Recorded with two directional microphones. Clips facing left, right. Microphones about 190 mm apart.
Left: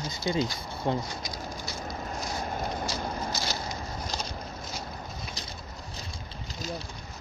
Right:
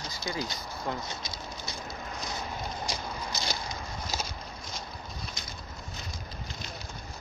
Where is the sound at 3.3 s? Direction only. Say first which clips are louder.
Left 2 dB; 20° right (ahead or behind).